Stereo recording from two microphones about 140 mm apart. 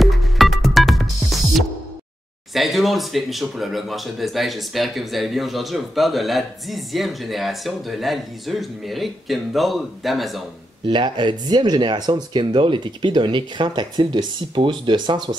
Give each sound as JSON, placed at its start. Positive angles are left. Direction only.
{"t": 0.0, "sound": "music", "side_deg": 0}
{"t": 2.5, "sound": "speech", "side_deg": 0}
{"t": 10.9, "sound": "speech", "side_deg": -35}